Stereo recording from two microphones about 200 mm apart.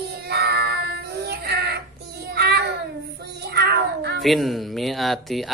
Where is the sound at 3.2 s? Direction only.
55° right (ahead or behind).